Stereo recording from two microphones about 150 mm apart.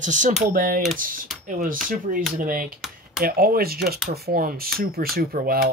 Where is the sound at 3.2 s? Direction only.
80° right.